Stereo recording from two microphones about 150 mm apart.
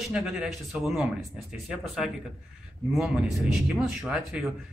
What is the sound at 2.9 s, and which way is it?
Speech, centre (ahead or behind).